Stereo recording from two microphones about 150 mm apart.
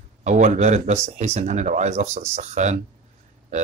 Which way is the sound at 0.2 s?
55° right (ahead or behind).